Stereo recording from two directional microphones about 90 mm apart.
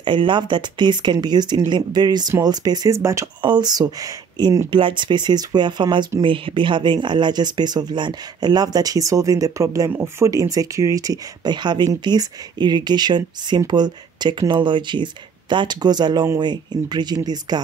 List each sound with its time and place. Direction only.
0.0 s speech: 60° right (ahead or behind); by 3.0 s 45° right (ahead or behind)
3.0 s speech: 35° right (ahead or behind)
3.4 s speech: 50° right (ahead or behind)
4.6 s speech: 65° right (ahead or behind)
6.2 s speech: 70° right (ahead or behind); by 17.6 s 50° right (ahead or behind)